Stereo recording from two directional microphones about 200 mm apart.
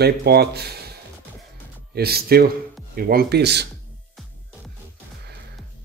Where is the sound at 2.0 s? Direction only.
50° right (ahead or behind).